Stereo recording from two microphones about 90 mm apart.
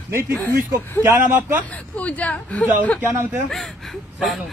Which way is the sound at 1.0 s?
30° right (ahead or behind).